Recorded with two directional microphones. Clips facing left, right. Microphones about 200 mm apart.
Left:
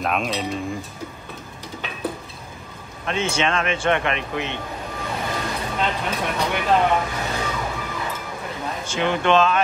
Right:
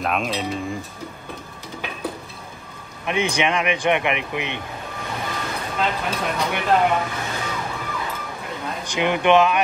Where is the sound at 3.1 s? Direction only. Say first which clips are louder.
Right 1 dB; 15° right (ahead or behind).